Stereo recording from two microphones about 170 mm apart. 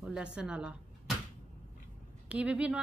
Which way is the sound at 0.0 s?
5° right (ahead or behind).